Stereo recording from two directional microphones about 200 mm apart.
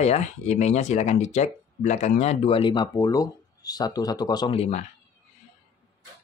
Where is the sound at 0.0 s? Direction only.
35° left (ahead or behind).